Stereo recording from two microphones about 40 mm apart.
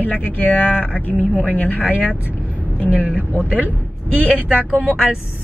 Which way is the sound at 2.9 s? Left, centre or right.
Right.